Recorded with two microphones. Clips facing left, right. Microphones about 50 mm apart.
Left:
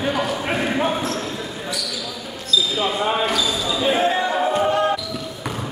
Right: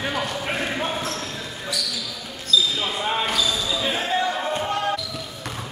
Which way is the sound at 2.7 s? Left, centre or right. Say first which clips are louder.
Left 4 dB; centre.